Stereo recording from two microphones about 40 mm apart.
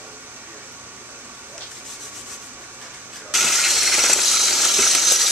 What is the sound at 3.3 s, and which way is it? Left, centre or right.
Ratchet, centre.